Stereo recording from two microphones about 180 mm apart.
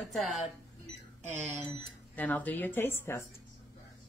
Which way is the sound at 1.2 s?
40° right (ahead or behind).